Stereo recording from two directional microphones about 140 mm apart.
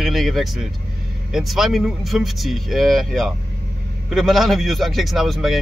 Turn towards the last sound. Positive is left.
turn(degrees=0)  # may be behind; listen again after turning